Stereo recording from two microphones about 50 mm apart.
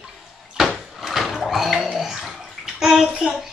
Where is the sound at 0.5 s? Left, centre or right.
Centre.